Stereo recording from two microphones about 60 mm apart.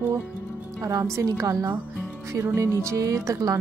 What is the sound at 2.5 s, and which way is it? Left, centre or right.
Music, right.